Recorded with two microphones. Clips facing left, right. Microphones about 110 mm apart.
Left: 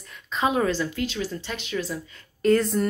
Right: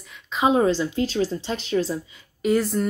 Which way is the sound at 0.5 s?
25° right (ahead or behind).